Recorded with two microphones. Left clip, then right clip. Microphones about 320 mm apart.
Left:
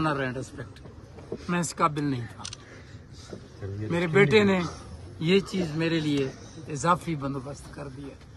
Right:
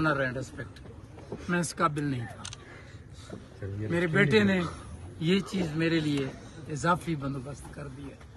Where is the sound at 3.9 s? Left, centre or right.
Centre.